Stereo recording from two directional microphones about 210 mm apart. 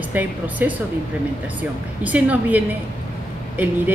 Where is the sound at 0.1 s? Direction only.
5° right (ahead or behind).